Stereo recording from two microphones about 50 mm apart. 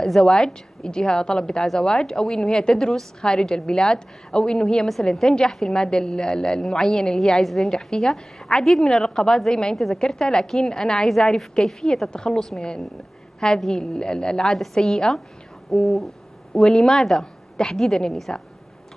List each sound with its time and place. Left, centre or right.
0.0 s a woman's voice: centre
13.6 s a woman's voice: centre
13.9 s a woman's voice: centre